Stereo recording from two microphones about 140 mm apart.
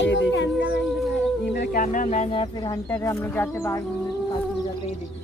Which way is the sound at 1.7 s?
70° left (ahead or behind).